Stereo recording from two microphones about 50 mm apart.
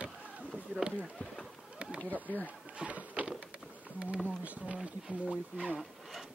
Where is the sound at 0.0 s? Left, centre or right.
Right.